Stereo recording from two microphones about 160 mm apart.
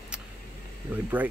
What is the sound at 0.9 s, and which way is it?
Speech, 10° right (ahead or behind).